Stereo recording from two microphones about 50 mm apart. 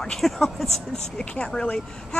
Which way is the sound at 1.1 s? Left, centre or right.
Centre.